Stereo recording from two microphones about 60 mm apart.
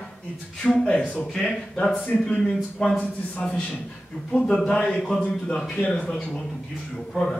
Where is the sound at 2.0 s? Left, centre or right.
Left.